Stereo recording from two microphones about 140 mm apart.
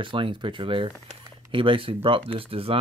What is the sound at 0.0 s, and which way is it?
Speech, 35° right (ahead or behind).